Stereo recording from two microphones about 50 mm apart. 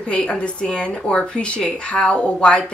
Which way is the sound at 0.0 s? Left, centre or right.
Centre.